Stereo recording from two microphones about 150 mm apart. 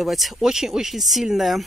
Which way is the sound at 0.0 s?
Centre (ahead or behind).